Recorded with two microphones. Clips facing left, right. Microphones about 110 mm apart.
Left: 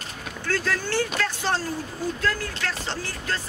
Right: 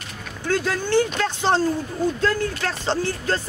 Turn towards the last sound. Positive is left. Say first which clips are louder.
# right 7 dB
turn(degrees=-30)  # may be behind; listen again after turning